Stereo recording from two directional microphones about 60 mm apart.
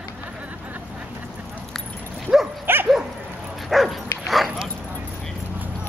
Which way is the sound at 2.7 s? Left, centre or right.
Right.